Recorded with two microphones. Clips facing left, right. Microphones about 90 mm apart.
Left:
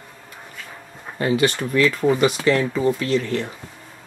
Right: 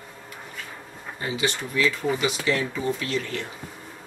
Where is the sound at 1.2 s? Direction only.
55° left (ahead or behind).